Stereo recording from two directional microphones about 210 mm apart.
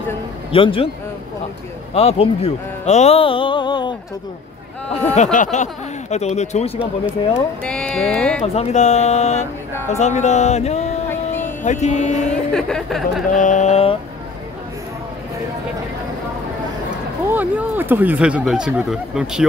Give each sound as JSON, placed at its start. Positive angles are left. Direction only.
{"t": 0.5, "sound": "speech", "side_deg": 25}
{"t": 2.0, "sound": "speech", "side_deg": 30}
{"t": 5.1, "sound": "speech", "side_deg": 35}
{"t": 7.6, "sound": "speech", "side_deg": 5}
{"t": 8.5, "sound": "speech", "side_deg": 35}
{"t": 11.1, "sound": "a sound", "side_deg": 10}
{"t": 11.6, "sound": "speech", "side_deg": 35}
{"t": 12.3, "sound": "speech", "side_deg": 5}
{"t": 13.3, "sound": "speech", "side_deg": 35}
{"t": 17.3, "sound": "speech", "side_deg": -10}